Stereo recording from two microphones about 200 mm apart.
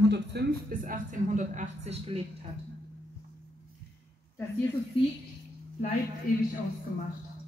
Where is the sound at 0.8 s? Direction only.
40° right (ahead or behind).